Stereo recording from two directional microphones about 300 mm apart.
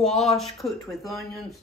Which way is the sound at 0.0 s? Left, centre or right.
Centre.